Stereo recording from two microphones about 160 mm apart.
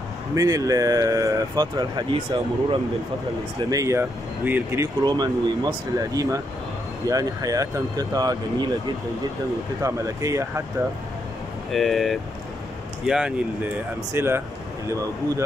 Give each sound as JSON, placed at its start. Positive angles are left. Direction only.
{"t": 0.3, "sound": "speech", "side_deg": -20}
{"t": 3.7, "sound": "speech", "side_deg": -20}
{"t": 5.0, "sound": "speech", "side_deg": -25}
{"t": 9.8, "sound": "speech", "side_deg": -20}
{"t": 11.7, "sound": "speech", "side_deg": 0}